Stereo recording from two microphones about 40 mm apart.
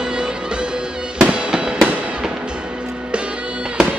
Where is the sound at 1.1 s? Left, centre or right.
Right.